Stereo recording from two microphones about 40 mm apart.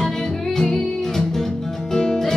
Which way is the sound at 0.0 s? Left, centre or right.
Centre.